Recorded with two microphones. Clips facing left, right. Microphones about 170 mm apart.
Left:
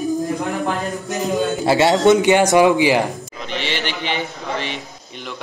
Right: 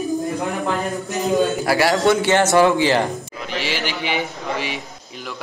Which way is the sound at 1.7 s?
25° left (ahead or behind).